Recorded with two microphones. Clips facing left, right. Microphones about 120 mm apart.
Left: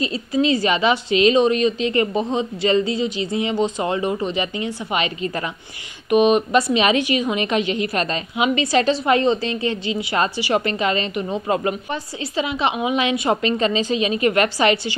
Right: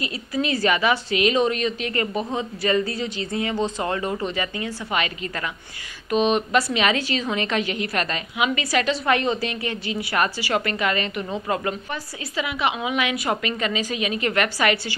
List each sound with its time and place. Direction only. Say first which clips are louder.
0.0 s a woman's voice: left 6 dB; 25° left (ahead or behind)